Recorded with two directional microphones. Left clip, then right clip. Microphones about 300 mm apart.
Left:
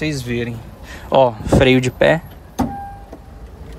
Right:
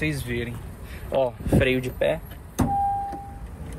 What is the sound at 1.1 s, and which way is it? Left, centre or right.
Speech, left.